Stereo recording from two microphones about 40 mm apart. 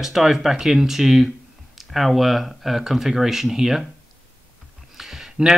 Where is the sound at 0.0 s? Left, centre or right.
Centre.